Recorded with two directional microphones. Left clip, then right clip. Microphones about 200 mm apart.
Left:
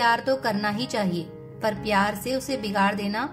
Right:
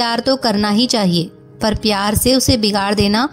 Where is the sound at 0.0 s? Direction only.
35° right (ahead or behind).